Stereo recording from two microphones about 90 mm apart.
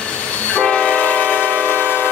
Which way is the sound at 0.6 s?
10° left (ahead or behind).